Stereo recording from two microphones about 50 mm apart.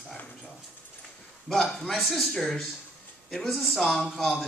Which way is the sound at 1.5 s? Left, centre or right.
Centre.